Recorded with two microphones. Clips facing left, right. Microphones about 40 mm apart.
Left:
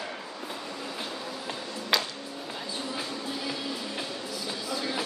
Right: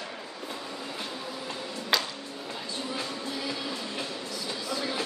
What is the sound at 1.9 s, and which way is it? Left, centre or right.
Music, centre.